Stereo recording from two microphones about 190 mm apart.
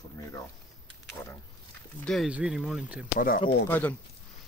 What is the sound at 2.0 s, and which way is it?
Speech, centre (ahead or behind).